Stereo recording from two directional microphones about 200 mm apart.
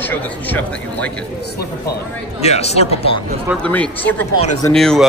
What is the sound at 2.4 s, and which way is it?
Speech, 30° left (ahead or behind).